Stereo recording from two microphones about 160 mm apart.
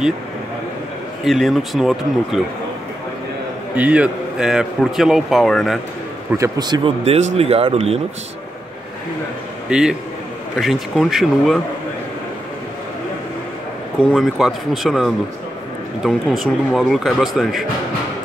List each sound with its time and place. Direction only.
1.2 s a man's voice: centre (ahead or behind)
3.7 s a man's voice: 10° right (ahead or behind)
6.3 s a man's voice: 25° right (ahead or behind)
7.1 s speech: 40° right (ahead or behind)
9.7 s a man's voice: 5° right (ahead or behind)
14.1 s a man's voice: centre (ahead or behind)